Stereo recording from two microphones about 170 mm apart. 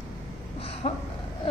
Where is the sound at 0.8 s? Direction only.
35° left (ahead or behind).